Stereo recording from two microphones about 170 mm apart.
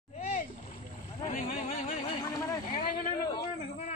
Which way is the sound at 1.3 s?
55° left (ahead or behind).